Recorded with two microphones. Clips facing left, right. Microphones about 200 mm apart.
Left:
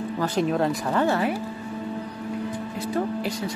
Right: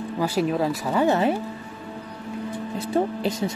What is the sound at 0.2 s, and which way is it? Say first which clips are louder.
Speech: right 1 dB; 5° right (ahead or behind).